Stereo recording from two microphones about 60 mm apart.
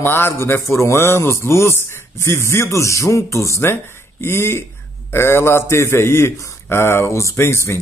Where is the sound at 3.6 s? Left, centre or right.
Left.